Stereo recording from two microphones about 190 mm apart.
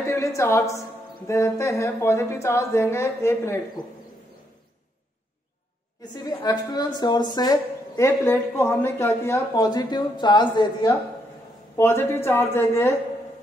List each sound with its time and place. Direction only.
0.0 s a woman's voice: 15° left (ahead or behind)
6.1 s a woman's voice: 20° left (ahead or behind)